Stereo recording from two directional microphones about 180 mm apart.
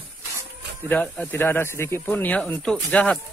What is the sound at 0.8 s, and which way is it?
Speech, 10° left (ahead or behind).